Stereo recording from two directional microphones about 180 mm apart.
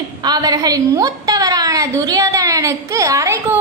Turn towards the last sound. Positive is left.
turn(degrees=-15)  # may be behind; listen again after turning